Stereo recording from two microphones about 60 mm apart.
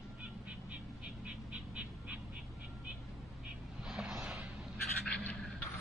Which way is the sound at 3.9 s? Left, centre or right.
Centre.